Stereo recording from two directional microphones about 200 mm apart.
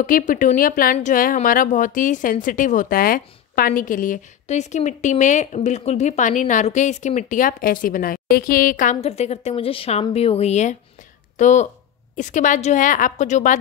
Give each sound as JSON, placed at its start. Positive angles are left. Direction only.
{"t": 0.0, "sound": "speech", "side_deg": 40}